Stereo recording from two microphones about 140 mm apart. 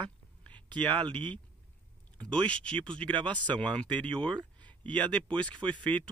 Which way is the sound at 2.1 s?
10° left (ahead or behind).